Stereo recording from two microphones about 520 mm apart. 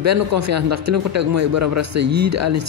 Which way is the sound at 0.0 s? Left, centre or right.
Right.